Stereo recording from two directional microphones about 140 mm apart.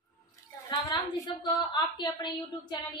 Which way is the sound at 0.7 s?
30° left (ahead or behind).